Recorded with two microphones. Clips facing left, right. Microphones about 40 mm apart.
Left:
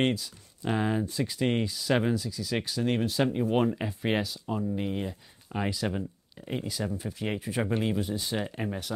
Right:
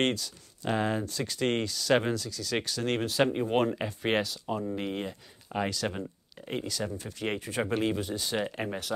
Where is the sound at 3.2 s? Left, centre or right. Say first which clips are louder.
Right 2 dB; right.